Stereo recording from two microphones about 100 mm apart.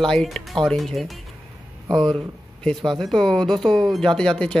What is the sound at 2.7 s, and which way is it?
Speech, 5° left (ahead or behind).